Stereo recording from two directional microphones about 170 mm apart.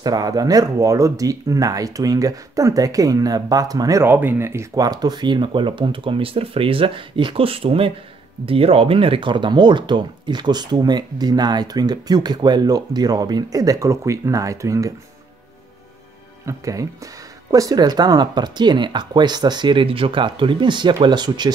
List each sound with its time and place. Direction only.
0.0 s speech: 20° right (ahead or behind)
16.4 s speech: 20° right (ahead or behind)